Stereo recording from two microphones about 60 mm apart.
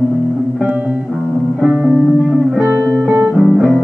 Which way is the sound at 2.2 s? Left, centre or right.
Centre.